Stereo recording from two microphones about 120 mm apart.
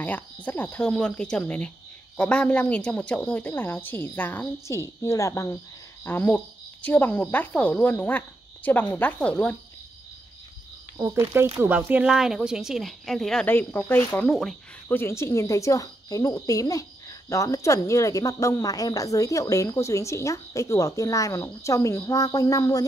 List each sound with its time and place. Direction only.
0.0 s a woman's voice: 15° left (ahead or behind)
11.0 s speech: 20° right (ahead or behind); by 13.5 s 5° left (ahead or behind)
13.5 s a woman's voice: 15° left (ahead or behind)
14.2 s speech: 5° left (ahead or behind)
14.9 s a woman's voice: 20° left (ahead or behind)